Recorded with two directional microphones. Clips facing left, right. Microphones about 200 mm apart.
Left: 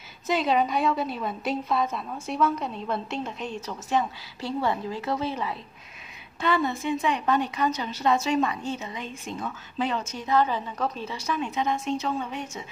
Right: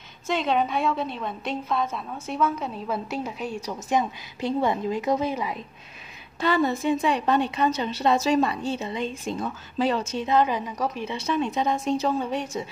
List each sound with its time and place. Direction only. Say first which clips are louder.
0.3 s a woman's voice: even; centre (ahead or behind); by 5.6 s 15° right (ahead or behind)
6.4 s a woman's voice: right 3 dB; 40° right (ahead or behind)
10.2 s a woman's voice: right 1 dB; 20° right (ahead or behind); by 12.4 s 35° right (ahead or behind)